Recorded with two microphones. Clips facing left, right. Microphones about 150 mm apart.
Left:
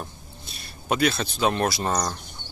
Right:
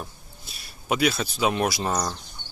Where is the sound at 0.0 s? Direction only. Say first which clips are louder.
Left 1 dB; 5° right (ahead or behind).